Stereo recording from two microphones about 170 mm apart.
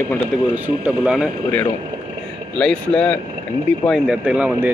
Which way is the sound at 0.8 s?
5° right (ahead or behind).